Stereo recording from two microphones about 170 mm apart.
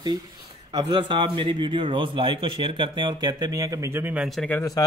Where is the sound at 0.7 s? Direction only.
25° right (ahead or behind); by 4.6 s centre (ahead or behind).